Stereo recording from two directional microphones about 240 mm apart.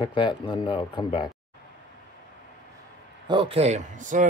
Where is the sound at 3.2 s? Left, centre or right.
Right.